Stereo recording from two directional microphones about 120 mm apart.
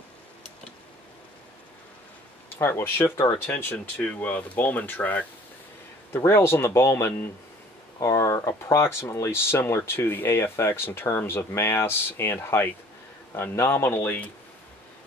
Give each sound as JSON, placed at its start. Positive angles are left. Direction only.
{"t": 2.6, "sound": "speech", "side_deg": 20}